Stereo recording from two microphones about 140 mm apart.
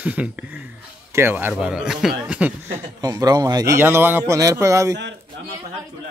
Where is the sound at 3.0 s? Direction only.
25° right (ahead or behind).